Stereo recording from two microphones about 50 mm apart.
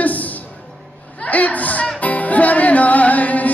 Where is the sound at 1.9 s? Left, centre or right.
Left.